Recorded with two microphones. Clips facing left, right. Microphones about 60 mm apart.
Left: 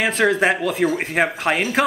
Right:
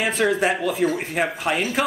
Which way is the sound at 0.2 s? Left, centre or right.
Left.